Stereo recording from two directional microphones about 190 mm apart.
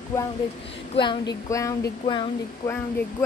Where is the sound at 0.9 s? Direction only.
25° left (ahead or behind).